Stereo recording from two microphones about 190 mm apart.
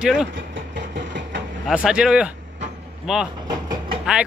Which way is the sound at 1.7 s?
5° right (ahead or behind).